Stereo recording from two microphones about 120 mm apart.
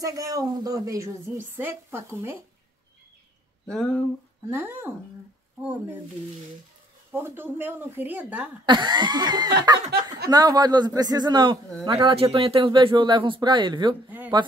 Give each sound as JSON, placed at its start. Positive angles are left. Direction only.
{"t": 0.0, "sound": "speech", "side_deg": -30}
{"t": 3.6, "sound": "speech", "side_deg": 5}
{"t": 4.5, "sound": "speech", "side_deg": -20}
{"t": 7.1, "sound": "speech", "side_deg": -20}
{"t": 8.6, "sound": "speech", "side_deg": -40}
{"t": 14.0, "sound": "speech", "side_deg": -15}